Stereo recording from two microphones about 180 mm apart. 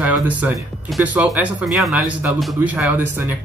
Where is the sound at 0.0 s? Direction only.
10° right (ahead or behind).